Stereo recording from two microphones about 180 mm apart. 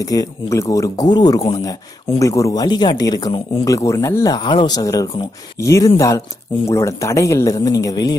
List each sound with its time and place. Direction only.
0.0 s speech: 20° left (ahead or behind)